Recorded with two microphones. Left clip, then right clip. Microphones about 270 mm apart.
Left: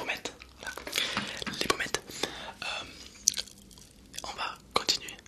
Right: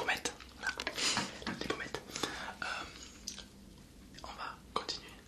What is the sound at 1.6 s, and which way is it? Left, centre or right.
Whispering, left.